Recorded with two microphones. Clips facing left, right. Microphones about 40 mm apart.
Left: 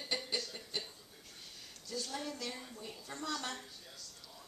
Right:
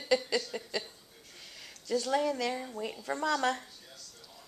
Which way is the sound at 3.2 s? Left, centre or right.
Right.